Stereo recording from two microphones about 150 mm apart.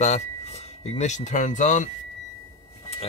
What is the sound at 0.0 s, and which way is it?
Speech, 45° left (ahead or behind).